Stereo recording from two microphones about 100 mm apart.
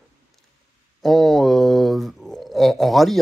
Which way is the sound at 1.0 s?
Centre (ahead or behind).